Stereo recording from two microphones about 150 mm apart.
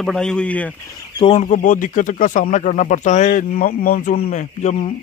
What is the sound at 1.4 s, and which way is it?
Speech, 60° left (ahead or behind).